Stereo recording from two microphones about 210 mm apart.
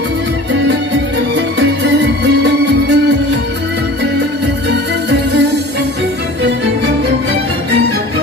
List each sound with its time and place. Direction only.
1.3 s music: 55° right (ahead or behind)
4.6 s music: 55° right (ahead or behind)